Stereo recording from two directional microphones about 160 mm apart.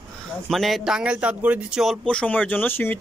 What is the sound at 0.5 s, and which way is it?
Speech, centre (ahead or behind).